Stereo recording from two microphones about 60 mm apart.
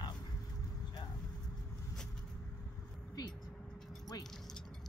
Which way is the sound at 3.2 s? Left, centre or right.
Left.